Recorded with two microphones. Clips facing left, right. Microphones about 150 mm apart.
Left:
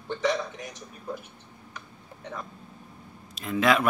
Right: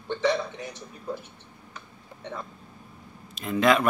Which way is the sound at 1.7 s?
25° right (ahead or behind).